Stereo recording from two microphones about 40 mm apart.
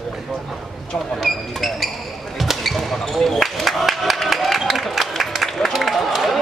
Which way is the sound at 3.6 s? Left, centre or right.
Centre.